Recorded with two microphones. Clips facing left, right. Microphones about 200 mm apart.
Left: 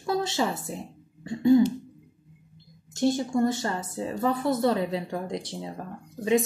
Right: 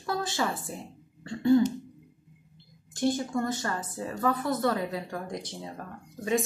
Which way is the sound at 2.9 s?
25° left (ahead or behind).